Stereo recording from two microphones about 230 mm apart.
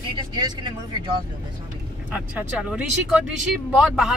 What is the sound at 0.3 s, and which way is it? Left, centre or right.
Speech, centre.